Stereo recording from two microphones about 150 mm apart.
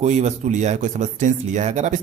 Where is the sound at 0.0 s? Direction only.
50° right (ahead or behind).